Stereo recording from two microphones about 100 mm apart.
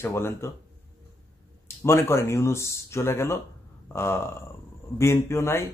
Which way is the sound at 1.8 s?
25° left (ahead or behind).